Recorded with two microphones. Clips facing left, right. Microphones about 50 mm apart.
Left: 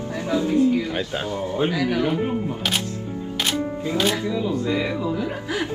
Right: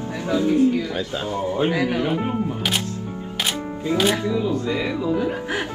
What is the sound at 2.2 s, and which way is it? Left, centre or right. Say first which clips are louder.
Speech: even; right.